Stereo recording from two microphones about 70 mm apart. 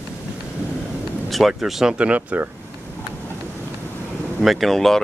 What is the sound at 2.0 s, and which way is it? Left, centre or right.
Speech, centre.